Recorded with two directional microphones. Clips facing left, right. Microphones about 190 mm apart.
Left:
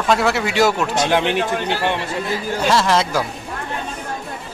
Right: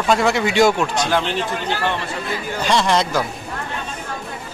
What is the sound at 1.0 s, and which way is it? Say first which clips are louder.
Speech: left 3 dB; 20° left (ahead or behind).